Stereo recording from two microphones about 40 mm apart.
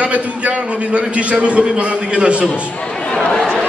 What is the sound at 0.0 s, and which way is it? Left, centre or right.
A man's voice, right.